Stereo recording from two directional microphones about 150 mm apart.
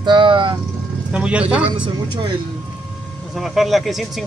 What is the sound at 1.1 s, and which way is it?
Speech, 5° right (ahead or behind).